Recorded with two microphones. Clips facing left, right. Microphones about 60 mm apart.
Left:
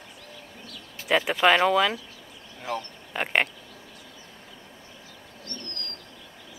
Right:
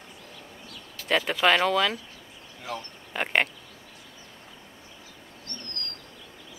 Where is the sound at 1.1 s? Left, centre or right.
Centre.